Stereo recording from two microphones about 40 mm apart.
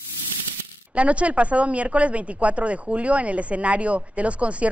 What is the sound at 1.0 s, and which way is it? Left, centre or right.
Speech, right.